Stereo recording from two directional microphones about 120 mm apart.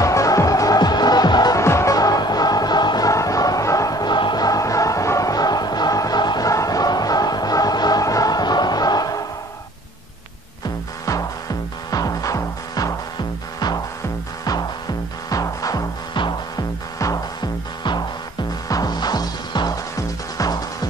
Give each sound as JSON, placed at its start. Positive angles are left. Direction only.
{"t": 0.0, "sound": "music", "side_deg": 25}
{"t": 11.1, "sound": "music", "side_deg": 30}
{"t": 15.2, "sound": "music", "side_deg": 30}
{"t": 17.0, "sound": "music", "side_deg": 30}